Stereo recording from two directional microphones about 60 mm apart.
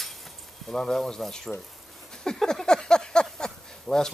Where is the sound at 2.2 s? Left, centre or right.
Centre.